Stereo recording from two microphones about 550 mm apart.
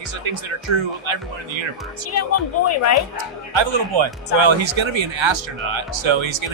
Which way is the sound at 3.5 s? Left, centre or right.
Right.